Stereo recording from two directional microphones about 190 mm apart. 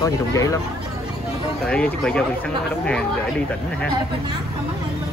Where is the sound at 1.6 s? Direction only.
5° left (ahead or behind).